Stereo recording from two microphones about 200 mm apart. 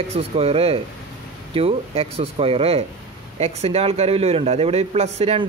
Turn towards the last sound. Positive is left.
turn(degrees=-30)  # may be behind; listen again after turning